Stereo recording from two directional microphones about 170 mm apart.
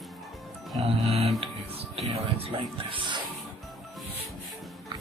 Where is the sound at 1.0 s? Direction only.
35° right (ahead or behind).